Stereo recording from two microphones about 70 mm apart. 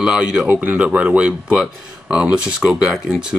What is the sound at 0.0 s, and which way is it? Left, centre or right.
Speech, centre.